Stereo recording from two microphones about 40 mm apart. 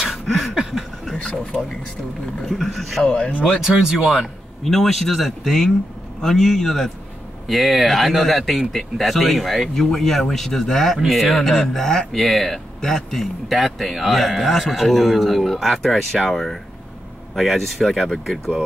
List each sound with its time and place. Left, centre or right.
0.1 s a sound: centre
2.4 s speech: centre
3.0 s speech: left
3.6 s speech: centre
4.2 s a man's voice: centre
7.4 s speech: centre